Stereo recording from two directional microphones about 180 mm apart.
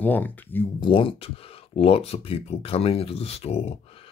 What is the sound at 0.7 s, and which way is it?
Speech, 30° left (ahead or behind).